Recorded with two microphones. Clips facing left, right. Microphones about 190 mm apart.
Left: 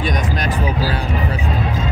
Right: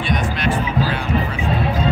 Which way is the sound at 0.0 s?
40° left (ahead or behind).